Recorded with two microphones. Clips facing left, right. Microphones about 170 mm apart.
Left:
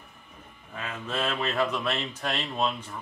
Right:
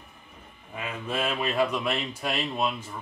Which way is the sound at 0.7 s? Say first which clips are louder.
Right 1 dB; 15° right (ahead or behind).